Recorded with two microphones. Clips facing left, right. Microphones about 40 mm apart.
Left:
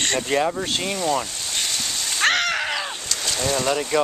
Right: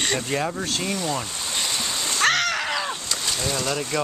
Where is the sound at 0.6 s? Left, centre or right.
Centre.